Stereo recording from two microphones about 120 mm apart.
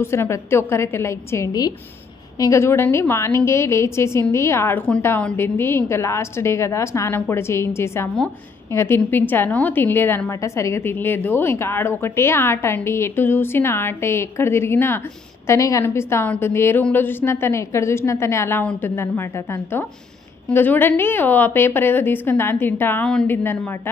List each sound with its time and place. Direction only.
0.0 s a woman's voice: 20° left (ahead or behind)